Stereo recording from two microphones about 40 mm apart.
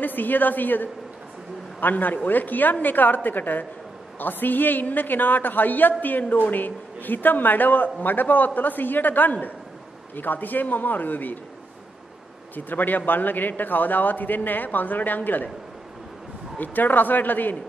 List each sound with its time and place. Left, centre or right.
0.0 s a woman's voice: left
12.5 s a woman's voice: left
16.5 s a woman's voice: left